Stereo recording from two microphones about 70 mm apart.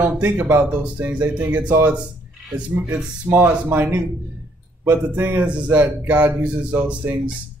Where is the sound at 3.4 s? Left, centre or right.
Right.